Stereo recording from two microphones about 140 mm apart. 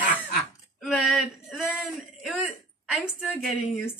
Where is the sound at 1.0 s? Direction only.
Centre (ahead or behind).